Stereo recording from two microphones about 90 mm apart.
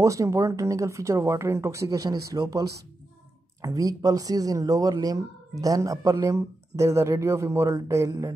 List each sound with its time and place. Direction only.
0.0 s speech: 35° right (ahead or behind)